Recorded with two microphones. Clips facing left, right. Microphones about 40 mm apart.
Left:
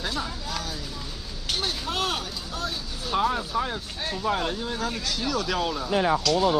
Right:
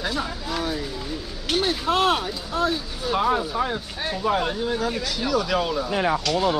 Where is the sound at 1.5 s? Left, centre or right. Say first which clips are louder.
Right 7 dB; right.